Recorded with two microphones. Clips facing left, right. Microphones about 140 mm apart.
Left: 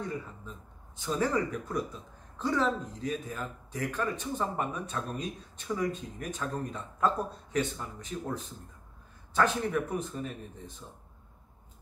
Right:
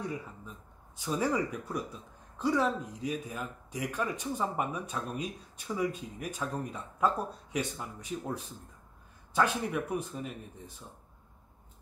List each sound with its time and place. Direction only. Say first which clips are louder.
0.9 s speech: left 1 dB; 10° right (ahead or behind)